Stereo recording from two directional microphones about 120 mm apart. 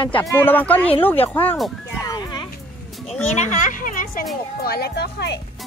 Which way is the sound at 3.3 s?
85° left.